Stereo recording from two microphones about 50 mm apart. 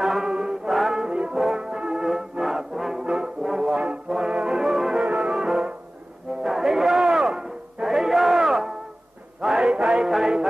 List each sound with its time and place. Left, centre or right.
0.0 s music: centre
0.7 s music: centre
1.0 s music: centre
1.4 s brass instrument: centre
5.0 s music: centre
6.4 s a sound: centre
9.4 s music: centre